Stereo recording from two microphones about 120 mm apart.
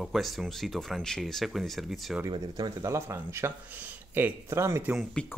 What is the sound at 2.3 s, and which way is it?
Speech, 35° right (ahead or behind).